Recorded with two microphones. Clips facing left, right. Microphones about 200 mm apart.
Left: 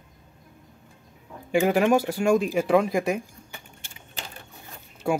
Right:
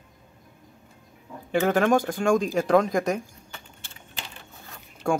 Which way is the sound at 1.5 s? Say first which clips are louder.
Left 1 dB; 10° left (ahead or behind).